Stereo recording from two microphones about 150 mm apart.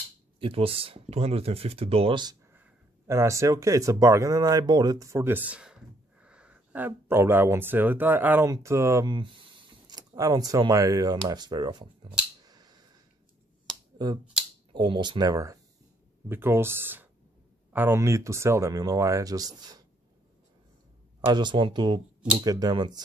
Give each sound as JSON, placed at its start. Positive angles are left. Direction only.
{"t": 0.4, "sound": "speech", "side_deg": -40}
{"t": 2.5, "sound": "speech", "side_deg": -15}
{"t": 12.4, "sound": "a sound", "side_deg": -25}
{"t": 13.9, "sound": "speech", "side_deg": -30}
{"t": 21.3, "sound": "speech", "side_deg": -30}